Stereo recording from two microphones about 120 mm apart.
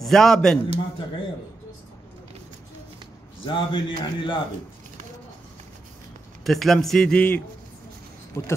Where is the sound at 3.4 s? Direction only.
45° left (ahead or behind).